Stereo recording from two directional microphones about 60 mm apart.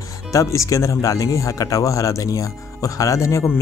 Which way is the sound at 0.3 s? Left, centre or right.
Left.